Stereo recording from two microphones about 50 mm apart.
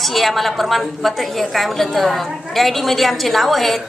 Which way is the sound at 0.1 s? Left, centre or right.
Centre.